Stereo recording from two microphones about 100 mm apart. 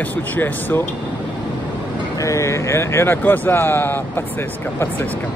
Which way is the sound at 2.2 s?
30° left (ahead or behind).